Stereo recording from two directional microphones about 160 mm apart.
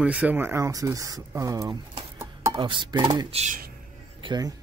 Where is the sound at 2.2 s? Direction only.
20° right (ahead or behind).